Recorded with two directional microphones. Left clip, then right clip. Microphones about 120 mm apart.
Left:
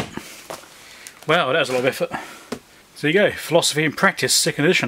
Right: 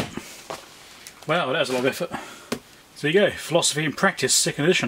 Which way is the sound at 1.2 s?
35° left (ahead or behind).